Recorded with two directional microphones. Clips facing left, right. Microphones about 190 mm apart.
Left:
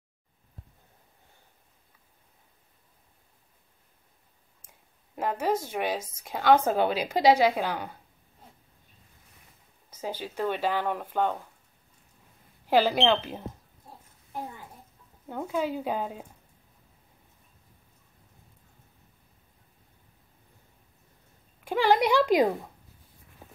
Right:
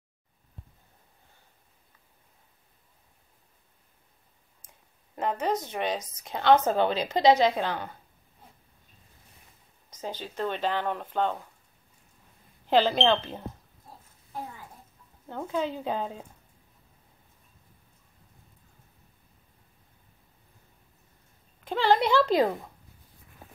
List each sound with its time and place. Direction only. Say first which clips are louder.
5.1 s a woman's voice: left 1 dB; 5° left (ahead or behind)
9.8 s speech: left 2 dB; 10° left (ahead or behind)
12.6 s speech: even; 10° left (ahead or behind)
15.2 s speech: left 1 dB; 10° left (ahead or behind)
21.6 s speech: left 1 dB; 10° left (ahead or behind)